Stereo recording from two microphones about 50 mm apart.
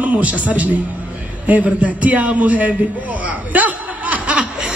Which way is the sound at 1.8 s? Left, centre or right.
Right.